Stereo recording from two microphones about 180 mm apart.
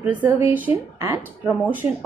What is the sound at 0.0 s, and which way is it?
A woman's voice, 10° right (ahead or behind).